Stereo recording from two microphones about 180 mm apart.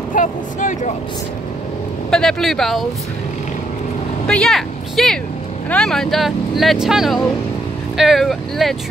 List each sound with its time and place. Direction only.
0.1 s speech: 45° left (ahead or behind)
2.0 s speech: 5° left (ahead or behind)
4.3 s speech: 5° left (ahead or behind)